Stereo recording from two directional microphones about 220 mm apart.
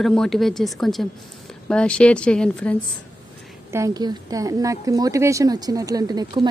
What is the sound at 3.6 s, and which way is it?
A woman's voice, 15° right (ahead or behind).